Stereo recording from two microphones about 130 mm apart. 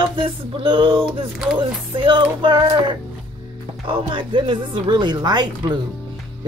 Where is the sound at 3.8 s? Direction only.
40° right (ahead or behind).